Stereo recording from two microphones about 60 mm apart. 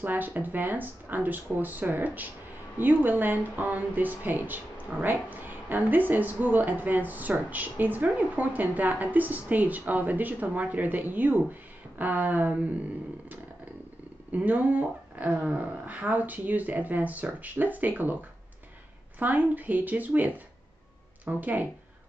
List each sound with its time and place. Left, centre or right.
0.0 s speech: right
14.3 s speech: right
19.1 s speech: right
21.3 s speech: right